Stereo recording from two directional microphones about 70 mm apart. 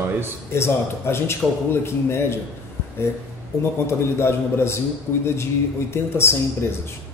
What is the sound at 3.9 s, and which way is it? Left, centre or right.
A man's voice, left.